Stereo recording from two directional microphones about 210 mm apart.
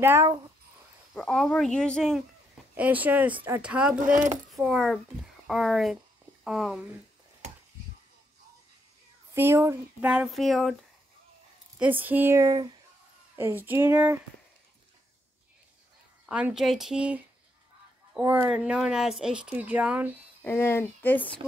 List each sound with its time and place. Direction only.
0.0 s speech: 10° right (ahead or behind)
1.1 s speech: centre (ahead or behind)
2.7 s speech: 10° right (ahead or behind)
4.0 s speech: 35° right (ahead or behind)
4.5 s speech: centre (ahead or behind)
9.3 s speech: 10° right (ahead or behind)
11.8 s speech: 10° right (ahead or behind)
16.3 s speech: 5° right (ahead or behind)
20.4 s speech: 10° left (ahead or behind)